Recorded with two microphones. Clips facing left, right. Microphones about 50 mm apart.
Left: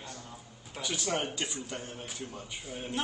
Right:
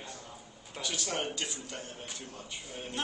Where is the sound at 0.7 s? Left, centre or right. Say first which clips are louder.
Left 3 dB; centre.